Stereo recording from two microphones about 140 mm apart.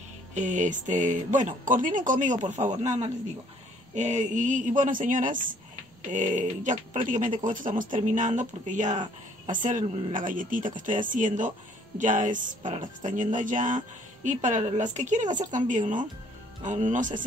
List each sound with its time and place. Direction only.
0.3 s a woman's voice: 60° right (ahead or behind)